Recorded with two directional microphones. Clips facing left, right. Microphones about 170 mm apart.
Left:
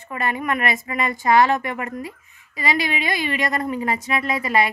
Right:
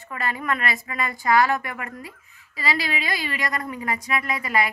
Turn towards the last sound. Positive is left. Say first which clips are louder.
# left 4 dB
turn(degrees=25)  # may be behind; listen again after turning